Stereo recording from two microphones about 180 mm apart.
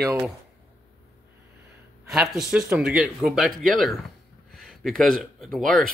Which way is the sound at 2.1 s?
Centre (ahead or behind).